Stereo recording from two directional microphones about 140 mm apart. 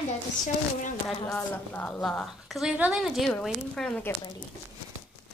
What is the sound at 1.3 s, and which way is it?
A woman's voice, 10° left (ahead or behind).